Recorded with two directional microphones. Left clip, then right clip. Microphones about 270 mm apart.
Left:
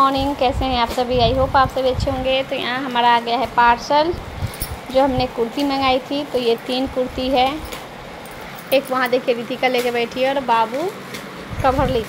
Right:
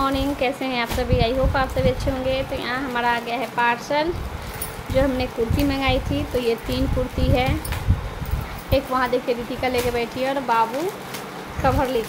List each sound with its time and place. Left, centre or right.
0.0 s a woman's voice: centre
8.6 s a woman's voice: centre